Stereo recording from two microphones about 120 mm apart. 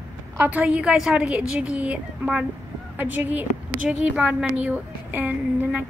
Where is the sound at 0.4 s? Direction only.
10° right (ahead or behind).